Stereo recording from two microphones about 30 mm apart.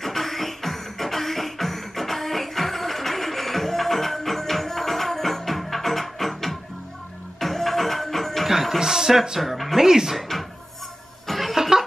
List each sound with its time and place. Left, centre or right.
0.0 s music: centre
8.5 s music: centre
8.7 s speech: centre
10.1 s music: centre
11.2 s cough: centre